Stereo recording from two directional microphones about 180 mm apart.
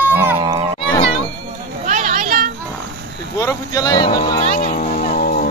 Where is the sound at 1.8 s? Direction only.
45° right (ahead or behind).